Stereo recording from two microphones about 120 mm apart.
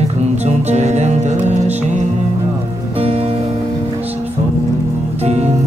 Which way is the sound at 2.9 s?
55° right (ahead or behind).